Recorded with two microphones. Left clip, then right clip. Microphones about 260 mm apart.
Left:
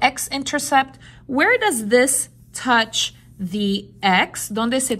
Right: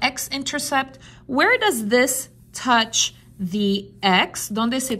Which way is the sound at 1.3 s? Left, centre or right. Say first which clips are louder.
Left 1 dB; centre.